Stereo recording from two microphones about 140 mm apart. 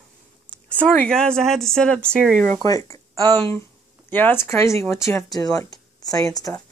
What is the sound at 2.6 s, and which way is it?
Speech, 25° left (ahead or behind).